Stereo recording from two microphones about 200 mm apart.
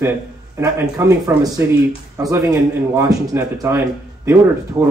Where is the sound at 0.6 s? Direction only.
15° right (ahead or behind).